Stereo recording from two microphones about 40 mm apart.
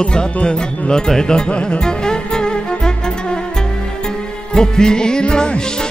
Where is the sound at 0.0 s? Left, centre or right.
Left.